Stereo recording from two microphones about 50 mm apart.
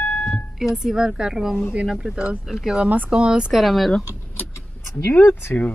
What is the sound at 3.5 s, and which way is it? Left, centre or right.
Speech, centre.